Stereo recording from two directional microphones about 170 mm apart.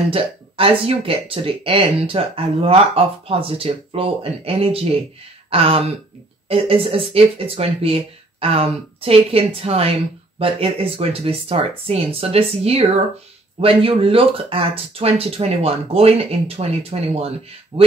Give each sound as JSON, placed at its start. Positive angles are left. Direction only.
{"t": 0.1, "sound": "speech", "side_deg": -30}